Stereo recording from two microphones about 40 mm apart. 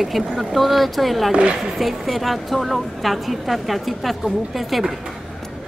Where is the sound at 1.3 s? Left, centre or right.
Right.